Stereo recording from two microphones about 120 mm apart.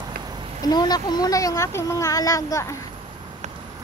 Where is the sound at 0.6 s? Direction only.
35° left (ahead or behind).